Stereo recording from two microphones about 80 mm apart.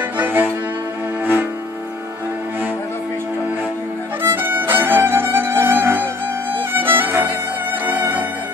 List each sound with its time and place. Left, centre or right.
0.2 s music: right
4.4 s music: right